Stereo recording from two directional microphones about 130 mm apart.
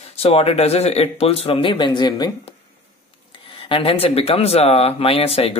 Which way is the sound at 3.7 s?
45° left (ahead or behind).